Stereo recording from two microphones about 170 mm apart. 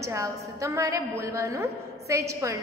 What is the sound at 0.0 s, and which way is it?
A woman's voice, 20° right (ahead or behind).